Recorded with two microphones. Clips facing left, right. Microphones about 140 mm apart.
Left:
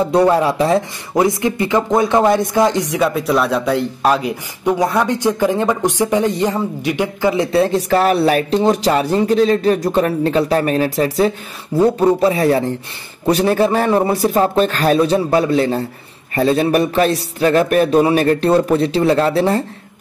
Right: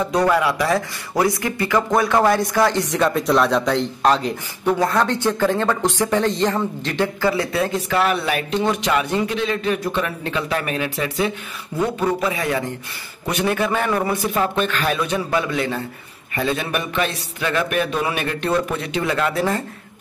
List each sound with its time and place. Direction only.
0.0 s speech: 30° left (ahead or behind)
7.5 s speech: 35° left (ahead or behind)